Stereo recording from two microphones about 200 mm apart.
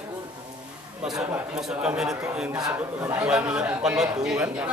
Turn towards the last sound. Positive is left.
turn(degrees=-5)  # may be behind; listen again after turning